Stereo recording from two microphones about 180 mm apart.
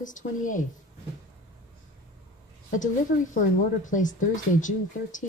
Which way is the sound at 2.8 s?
45° left (ahead or behind).